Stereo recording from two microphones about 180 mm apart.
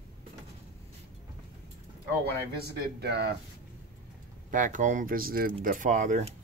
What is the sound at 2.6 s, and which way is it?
Speech, 65° right (ahead or behind).